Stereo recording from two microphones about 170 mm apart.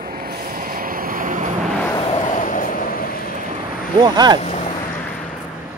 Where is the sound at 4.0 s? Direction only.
25° right (ahead or behind).